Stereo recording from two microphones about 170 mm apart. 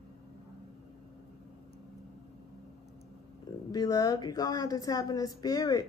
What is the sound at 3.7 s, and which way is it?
A woman's voice, 20° left (ahead or behind).